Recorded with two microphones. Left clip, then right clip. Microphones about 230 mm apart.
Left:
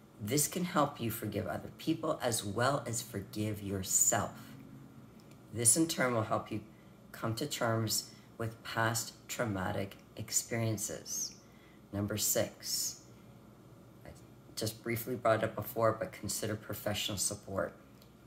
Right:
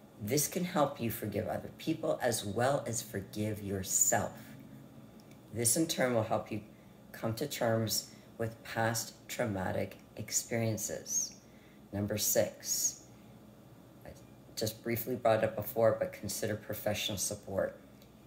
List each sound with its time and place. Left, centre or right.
0.3 s speech: centre
5.6 s speech: centre
14.5 s speech: centre